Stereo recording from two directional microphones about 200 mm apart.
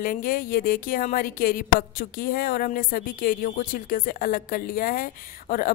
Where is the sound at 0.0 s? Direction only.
45° left (ahead or behind).